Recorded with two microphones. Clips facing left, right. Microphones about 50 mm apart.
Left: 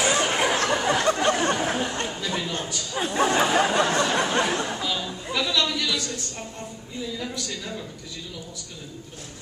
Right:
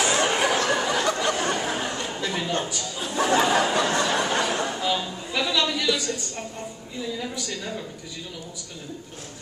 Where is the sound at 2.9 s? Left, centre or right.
Left.